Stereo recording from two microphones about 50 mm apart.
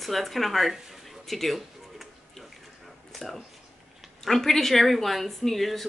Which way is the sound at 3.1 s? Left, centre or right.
Centre.